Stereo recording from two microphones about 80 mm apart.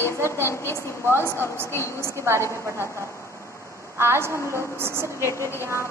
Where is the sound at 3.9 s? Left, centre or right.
Right.